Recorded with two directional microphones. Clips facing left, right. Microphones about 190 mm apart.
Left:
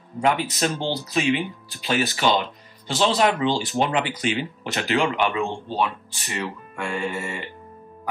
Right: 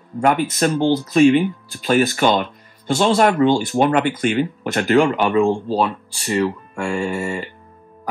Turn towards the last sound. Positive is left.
turn(degrees=-35)  # may be behind; listen again after turning